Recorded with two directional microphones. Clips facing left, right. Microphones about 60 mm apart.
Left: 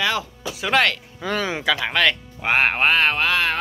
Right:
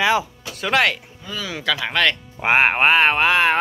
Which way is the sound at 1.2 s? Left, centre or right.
Left.